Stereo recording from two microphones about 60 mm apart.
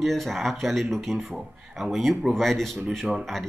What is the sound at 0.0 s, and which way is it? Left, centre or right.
Speech, centre.